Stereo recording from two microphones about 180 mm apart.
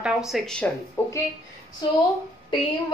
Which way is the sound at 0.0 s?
Centre (ahead or behind).